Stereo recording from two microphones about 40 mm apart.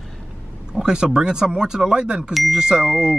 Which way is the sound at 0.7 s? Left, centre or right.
Centre.